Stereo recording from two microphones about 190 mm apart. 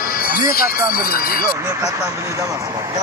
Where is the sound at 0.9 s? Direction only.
50° left (ahead or behind).